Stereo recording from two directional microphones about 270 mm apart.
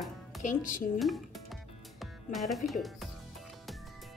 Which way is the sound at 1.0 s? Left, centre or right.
Centre.